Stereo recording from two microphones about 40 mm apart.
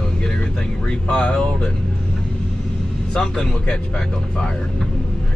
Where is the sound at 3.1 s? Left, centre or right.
Centre.